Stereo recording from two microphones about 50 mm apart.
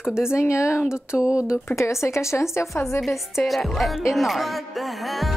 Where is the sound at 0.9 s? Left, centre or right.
Centre.